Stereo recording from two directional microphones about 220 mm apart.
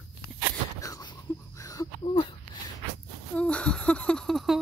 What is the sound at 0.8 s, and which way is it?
Wheeze, 15° left (ahead or behind).